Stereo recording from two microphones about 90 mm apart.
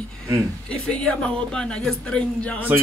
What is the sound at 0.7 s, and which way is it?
A woman's voice, 10° left (ahead or behind).